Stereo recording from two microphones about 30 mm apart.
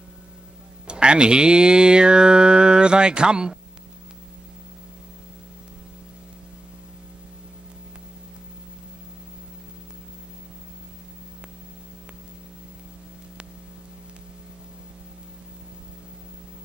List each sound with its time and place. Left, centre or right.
0.8 s music: right